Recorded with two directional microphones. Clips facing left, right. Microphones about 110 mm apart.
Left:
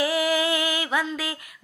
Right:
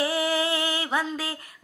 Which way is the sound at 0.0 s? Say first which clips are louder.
Left 2 dB; 30° right (ahead or behind).